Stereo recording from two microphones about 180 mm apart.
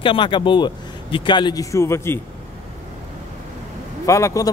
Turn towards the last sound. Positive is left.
turn(degrees=15)  # may be behind; listen again after turning